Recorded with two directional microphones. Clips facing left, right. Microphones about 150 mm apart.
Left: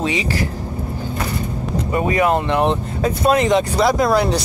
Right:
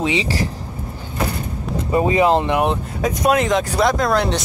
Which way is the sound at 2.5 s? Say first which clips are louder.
Left 1 dB; 5° right (ahead or behind).